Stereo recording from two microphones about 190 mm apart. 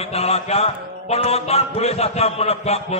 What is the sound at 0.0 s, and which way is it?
A man's voice, 35° left (ahead or behind).